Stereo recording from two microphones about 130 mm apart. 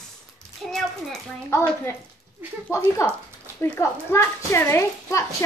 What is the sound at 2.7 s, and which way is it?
Speech, 25° left (ahead or behind).